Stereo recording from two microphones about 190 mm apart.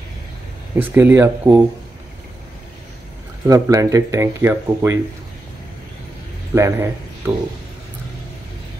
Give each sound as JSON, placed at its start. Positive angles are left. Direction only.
{"t": 0.7, "sound": "speech", "side_deg": -10}
{"t": 3.4, "sound": "speech", "side_deg": -15}
{"t": 6.5, "sound": "a man's voice", "side_deg": -15}